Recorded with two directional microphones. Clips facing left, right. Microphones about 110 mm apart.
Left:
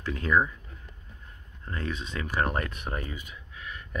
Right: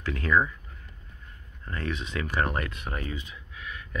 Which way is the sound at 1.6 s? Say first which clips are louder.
Right 1 dB; 25° left (ahead or behind).